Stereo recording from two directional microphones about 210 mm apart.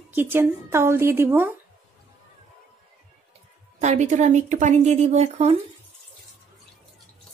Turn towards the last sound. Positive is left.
turn(degrees=-30)  # may be behind; listen again after turning